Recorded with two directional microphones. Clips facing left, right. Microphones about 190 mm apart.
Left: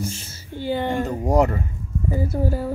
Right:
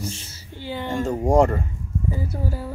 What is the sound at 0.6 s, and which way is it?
Speech, 50° left (ahead or behind).